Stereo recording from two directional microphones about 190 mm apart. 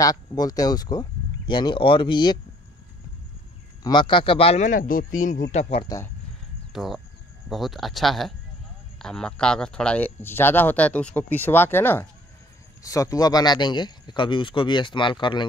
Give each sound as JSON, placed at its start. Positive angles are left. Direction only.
{"t": 0.0, "sound": "speech", "side_deg": 20}
{"t": 3.8, "sound": "a man's voice", "side_deg": 25}
{"t": 6.7, "sound": "speech", "side_deg": 0}